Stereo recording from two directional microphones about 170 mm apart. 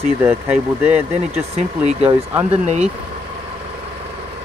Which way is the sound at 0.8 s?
10° right (ahead or behind).